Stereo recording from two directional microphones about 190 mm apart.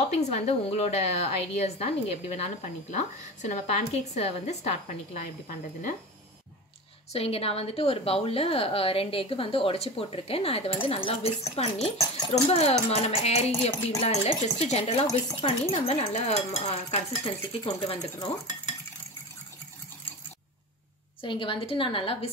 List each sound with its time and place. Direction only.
0.1 s a woman's voice: 35° left (ahead or behind)
7.1 s a woman's voice: 30° left (ahead or behind)
21.2 s a woman's voice: 25° left (ahead or behind)